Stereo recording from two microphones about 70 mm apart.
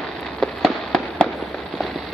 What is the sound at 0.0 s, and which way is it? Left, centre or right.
Fireworks, centre.